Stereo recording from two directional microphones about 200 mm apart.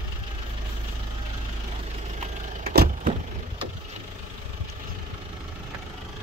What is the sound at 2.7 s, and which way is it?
Vehicle, 50° right (ahead or behind).